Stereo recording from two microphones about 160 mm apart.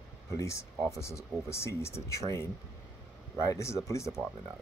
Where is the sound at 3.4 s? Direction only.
20° left (ahead or behind).